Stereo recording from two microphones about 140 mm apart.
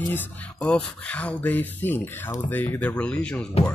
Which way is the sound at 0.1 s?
10° left (ahead or behind).